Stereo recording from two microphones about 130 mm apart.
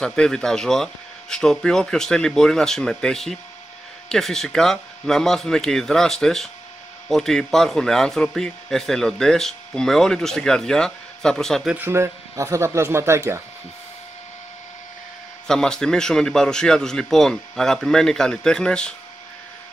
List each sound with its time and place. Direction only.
0.0 s speech: 5° left (ahead or behind)
11.7 s speech: 15° right (ahead or behind)
15.4 s speech: 5° left (ahead or behind)